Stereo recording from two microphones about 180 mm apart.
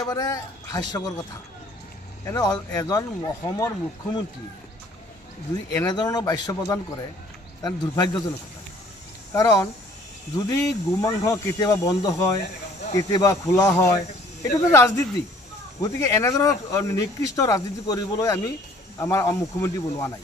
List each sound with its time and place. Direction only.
0.1 s speech: 20° left (ahead or behind)
2.2 s speech: 20° left (ahead or behind)
5.7 s speech: 20° left (ahead or behind)
9.3 s speech: 20° left (ahead or behind)